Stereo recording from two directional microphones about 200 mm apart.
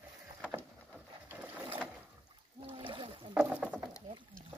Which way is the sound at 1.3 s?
10° right (ahead or behind).